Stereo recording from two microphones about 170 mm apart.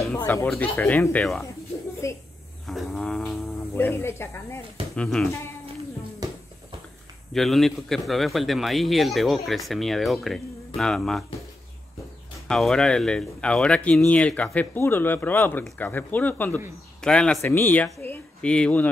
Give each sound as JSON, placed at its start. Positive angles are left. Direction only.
{"t": 0.1, "sound": "speech", "side_deg": 15}
{"t": 2.0, "sound": "speech", "side_deg": 15}
{"t": 2.6, "sound": "a sound", "side_deg": 0}
{"t": 3.7, "sound": "speech", "side_deg": 15}
{"t": 4.9, "sound": "a man's voice", "side_deg": 5}
{"t": 7.3, "sound": "a man's voice", "side_deg": 0}
{"t": 12.4, "sound": "a man's voice", "side_deg": 5}
{"t": 18.0, "sound": "a sound", "side_deg": 10}